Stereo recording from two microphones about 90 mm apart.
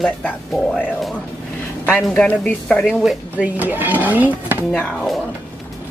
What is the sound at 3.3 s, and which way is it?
Speech, 20° right (ahead or behind).